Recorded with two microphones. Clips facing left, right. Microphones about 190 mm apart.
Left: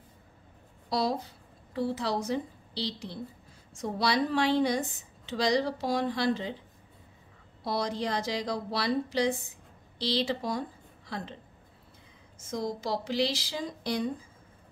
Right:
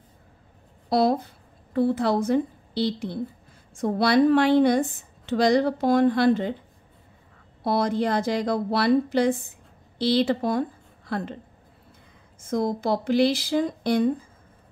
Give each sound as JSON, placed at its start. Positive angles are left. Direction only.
{"t": 0.8, "sound": "a woman's voice", "side_deg": -55}
{"t": 7.6, "sound": "a woman's voice", "side_deg": -55}
{"t": 12.4, "sound": "a woman's voice", "side_deg": -55}